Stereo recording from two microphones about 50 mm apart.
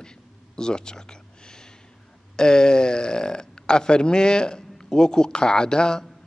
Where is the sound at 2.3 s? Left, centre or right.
Centre.